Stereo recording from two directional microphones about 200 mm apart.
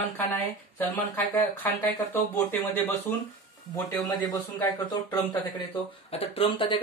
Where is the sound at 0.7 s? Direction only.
10° left (ahead or behind).